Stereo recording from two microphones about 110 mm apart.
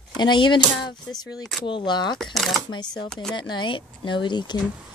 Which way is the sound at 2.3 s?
Centre (ahead or behind).